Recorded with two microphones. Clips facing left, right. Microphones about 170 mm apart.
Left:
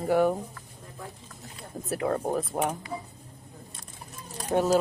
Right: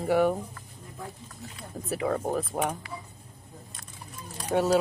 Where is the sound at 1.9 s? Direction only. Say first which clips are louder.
Even; centre (ahead or behind).